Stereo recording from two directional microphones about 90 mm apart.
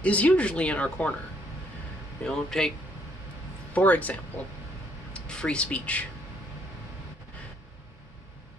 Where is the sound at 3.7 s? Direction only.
15° left (ahead or behind).